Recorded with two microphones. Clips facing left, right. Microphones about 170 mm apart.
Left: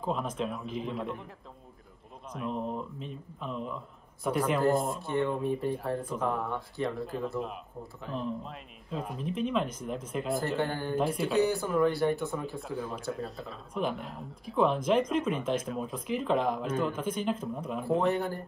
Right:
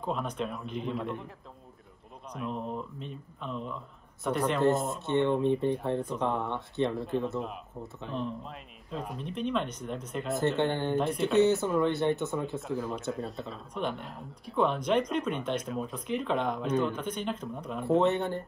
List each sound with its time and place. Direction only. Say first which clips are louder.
0.0 s speech: left 1 dB; centre (ahead or behind)
2.3 s speech: left 1 dB; centre (ahead or behind)
5.0 s speech: right 3 dB; 25° right (ahead or behind)
7.0 s speech: right 2 dB; centre (ahead or behind)
10.6 s speech: right 3 dB; 25° right (ahead or behind)
11.0 s speech: right 1 dB; 5° left (ahead or behind)
11.3 s speech: right 3 dB; 25° right (ahead or behind)
12.5 s speech: right 3 dB; centre (ahead or behind)
17.8 s speech: right 3 dB; 25° right (ahead or behind)